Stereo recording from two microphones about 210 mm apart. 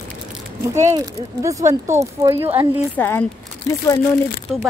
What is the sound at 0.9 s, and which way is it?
Speech, 15° right (ahead or behind).